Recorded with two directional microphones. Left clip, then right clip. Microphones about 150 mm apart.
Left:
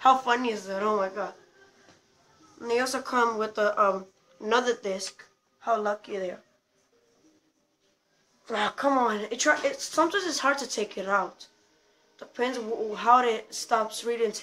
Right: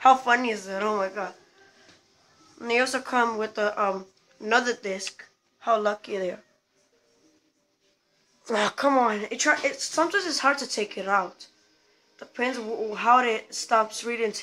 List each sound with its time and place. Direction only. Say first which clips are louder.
0.0 s speech: right 3 dB; 30° right (ahead or behind)
2.6 s speech: right 3 dB; 30° right (ahead or behind)
5.1 s a sound: right 4 dB; 35° right (ahead or behind)
6.0 s speech: right 3 dB; 60° right (ahead or behind)
8.5 s speech: right 3 dB; 65° right (ahead or behind)
8.7 s speech: right 2 dB; 40° right (ahead or behind)